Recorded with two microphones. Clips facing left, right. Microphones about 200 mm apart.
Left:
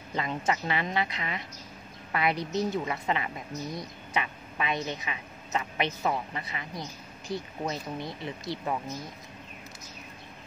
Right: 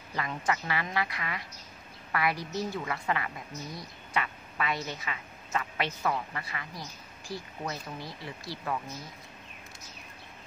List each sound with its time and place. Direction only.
0.1 s a woman's voice: 25° left (ahead or behind)